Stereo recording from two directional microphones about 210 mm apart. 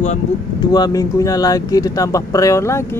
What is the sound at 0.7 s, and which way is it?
Speech, 20° left (ahead or behind).